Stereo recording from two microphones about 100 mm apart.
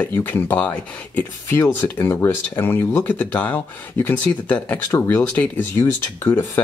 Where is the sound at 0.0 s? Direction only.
15° left (ahead or behind).